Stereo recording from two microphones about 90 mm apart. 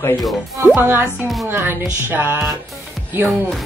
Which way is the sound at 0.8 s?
25° right (ahead or behind).